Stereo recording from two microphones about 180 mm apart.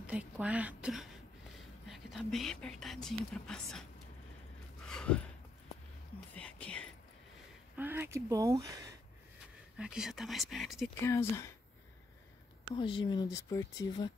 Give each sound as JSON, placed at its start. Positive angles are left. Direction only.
{"t": 0.0, "sound": "speech", "side_deg": -5}
{"t": 4.8, "sound": "a sound", "side_deg": 5}
{"t": 6.3, "sound": "whispering", "side_deg": 5}
{"t": 7.7, "sound": "speech", "side_deg": -10}
{"t": 9.8, "sound": "speech", "side_deg": -5}
{"t": 11.1, "sound": "speech", "side_deg": 15}
{"t": 12.6, "sound": "speech", "side_deg": 25}